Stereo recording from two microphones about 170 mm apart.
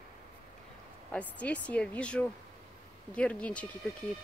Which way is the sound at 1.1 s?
10° left (ahead or behind).